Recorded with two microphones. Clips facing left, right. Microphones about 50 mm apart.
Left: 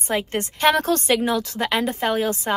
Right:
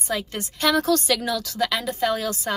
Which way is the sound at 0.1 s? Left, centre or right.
Left.